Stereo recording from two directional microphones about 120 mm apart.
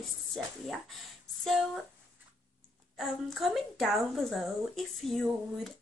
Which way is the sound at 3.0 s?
Centre (ahead or behind).